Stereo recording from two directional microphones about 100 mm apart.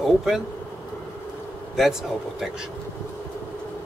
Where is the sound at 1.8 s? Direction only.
5° right (ahead or behind).